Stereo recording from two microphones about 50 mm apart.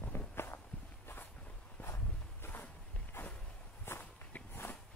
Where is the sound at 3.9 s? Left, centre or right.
Left.